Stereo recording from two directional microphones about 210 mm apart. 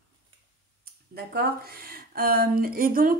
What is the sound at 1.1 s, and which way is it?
A woman's voice, 45° right (ahead or behind).